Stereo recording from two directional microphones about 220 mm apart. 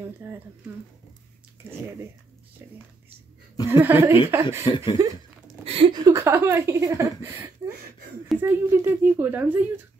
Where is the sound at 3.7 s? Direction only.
10° right (ahead or behind).